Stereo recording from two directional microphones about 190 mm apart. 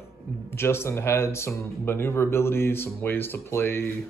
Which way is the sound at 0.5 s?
15° left (ahead or behind).